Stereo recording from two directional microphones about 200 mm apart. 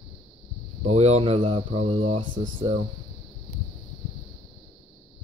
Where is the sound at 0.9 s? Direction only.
30° right (ahead or behind).